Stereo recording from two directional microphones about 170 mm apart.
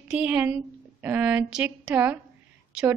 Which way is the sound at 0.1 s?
10° right (ahead or behind).